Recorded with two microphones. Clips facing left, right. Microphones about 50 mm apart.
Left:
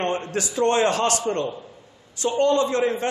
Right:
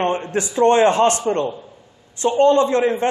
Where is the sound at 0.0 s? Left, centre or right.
Right.